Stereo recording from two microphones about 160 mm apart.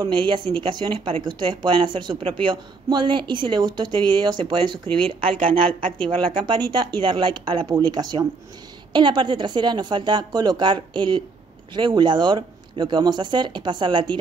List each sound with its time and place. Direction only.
0.0 s speech: 30° right (ahead or behind)